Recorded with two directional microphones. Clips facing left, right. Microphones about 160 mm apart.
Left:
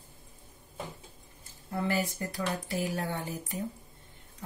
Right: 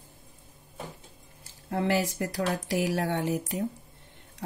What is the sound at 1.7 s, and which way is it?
Speech, 85° right.